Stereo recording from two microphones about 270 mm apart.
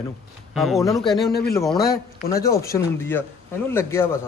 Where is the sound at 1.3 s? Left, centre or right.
Left.